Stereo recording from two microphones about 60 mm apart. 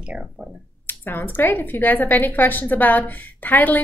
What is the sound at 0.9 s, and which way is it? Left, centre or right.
Speech, left.